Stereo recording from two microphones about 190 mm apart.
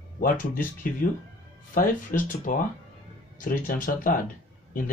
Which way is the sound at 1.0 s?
45° left (ahead or behind).